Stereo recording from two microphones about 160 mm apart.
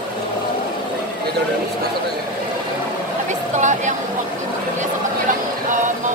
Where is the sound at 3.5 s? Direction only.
50° right (ahead or behind).